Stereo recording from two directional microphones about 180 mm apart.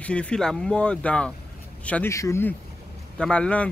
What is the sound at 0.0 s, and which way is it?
Speech, 5° left (ahead or behind).